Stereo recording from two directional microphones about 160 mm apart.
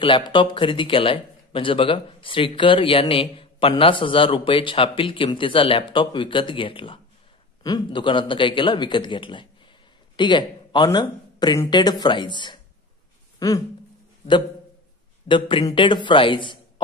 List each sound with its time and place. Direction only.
0.3 s speech: 30° left (ahead or behind)
15.2 s speech: 30° left (ahead or behind)